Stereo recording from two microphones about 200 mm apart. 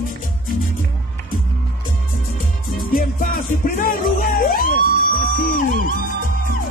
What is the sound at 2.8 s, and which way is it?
Music, 45° left (ahead or behind).